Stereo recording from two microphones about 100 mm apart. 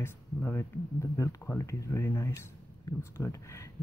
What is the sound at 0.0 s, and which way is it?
Speech, 25° left (ahead or behind).